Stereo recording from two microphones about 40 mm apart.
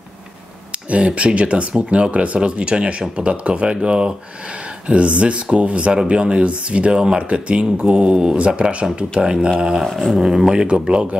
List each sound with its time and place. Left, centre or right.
1.0 s speech: right
9.8 s a sound: centre
10.1 s speech: centre